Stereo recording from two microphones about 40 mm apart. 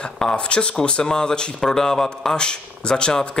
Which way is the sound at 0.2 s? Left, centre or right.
Left.